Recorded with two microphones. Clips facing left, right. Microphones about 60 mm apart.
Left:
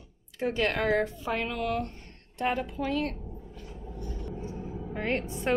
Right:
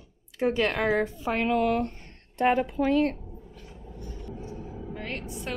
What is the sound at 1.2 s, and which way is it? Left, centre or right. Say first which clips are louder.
A woman's voice: right 6 dB; right.